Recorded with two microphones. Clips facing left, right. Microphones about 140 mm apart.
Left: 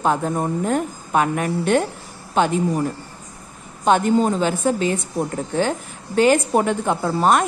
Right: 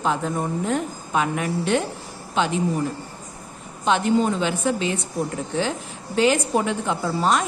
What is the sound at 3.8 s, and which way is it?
A woman's voice, 45° left (ahead or behind).